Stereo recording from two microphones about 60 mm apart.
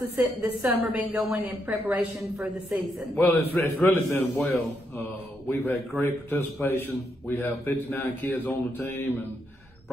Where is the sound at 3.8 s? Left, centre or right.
Left.